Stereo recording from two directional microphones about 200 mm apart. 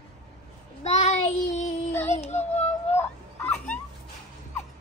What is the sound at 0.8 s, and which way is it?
Child singing, 30° left (ahead or behind).